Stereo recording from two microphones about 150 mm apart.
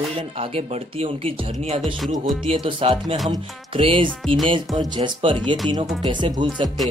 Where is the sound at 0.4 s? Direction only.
40° right (ahead or behind).